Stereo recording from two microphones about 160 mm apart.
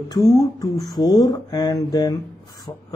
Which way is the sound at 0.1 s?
20° left (ahead or behind).